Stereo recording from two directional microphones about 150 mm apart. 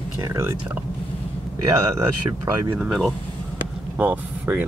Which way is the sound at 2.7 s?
5° right (ahead or behind).